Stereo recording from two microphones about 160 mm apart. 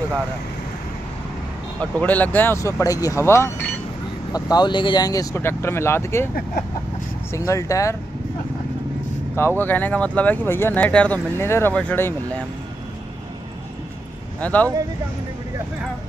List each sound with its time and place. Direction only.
1.8 s speech: 10° left (ahead or behind)
7.3 s speech: 20° left (ahead or behind)
9.3 s speech: 15° left (ahead or behind)
14.4 s speech: 10° left (ahead or behind)